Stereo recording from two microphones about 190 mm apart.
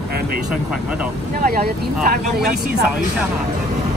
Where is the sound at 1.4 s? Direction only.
55° right (ahead or behind).